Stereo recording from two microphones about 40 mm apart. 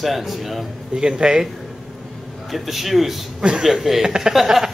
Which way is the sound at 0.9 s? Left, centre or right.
Centre.